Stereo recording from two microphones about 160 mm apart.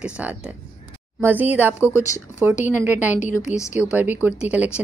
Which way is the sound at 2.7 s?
10° right (ahead or behind).